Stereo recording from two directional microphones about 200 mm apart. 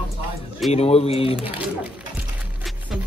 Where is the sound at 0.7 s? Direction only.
30° left (ahead or behind).